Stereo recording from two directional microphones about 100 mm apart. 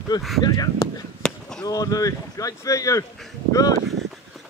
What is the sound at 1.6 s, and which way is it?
Speech, 40° left (ahead or behind).